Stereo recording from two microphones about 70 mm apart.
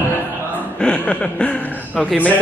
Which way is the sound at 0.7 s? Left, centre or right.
Centre.